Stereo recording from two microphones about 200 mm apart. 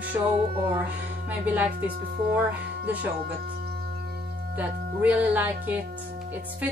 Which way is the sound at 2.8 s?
10° right (ahead or behind).